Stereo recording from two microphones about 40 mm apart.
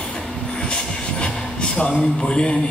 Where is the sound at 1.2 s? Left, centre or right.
Left.